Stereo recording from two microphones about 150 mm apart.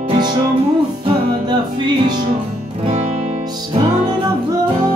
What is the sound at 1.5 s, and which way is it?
Music, 30° right (ahead or behind).